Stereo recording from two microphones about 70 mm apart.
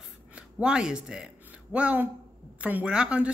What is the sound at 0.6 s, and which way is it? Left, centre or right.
Speech, centre.